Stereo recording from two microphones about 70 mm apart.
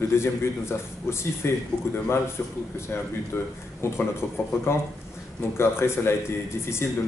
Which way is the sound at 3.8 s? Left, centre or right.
Left.